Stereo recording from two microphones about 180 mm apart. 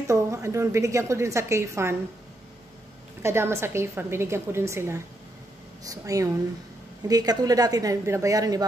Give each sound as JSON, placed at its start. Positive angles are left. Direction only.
{"t": 0.0, "sound": "a woman's voice", "side_deg": -15}
{"t": 3.2, "sound": "a woman's voice", "side_deg": -15}